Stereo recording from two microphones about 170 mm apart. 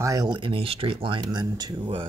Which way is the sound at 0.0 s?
20° right (ahead or behind).